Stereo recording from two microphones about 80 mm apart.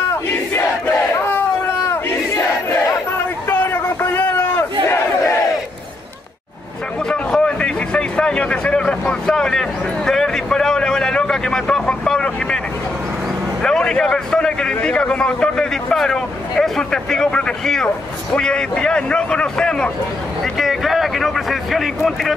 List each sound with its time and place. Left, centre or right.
0.3 s battle cry: left
3.4 s a sound: left
4.8 s battle cry: left
7.1 s a man's voice: centre
13.6 s a man's voice: centre
20.5 s speech: centre